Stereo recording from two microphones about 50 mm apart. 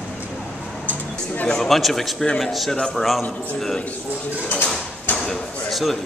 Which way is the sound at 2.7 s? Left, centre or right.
Centre.